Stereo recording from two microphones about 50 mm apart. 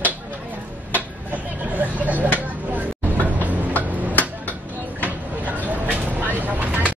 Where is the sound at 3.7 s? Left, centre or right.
Left.